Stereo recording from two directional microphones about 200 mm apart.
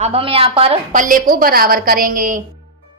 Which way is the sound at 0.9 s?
40° right (ahead or behind).